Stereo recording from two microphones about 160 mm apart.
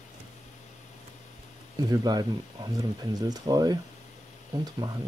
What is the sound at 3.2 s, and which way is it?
Speech, 25° right (ahead or behind).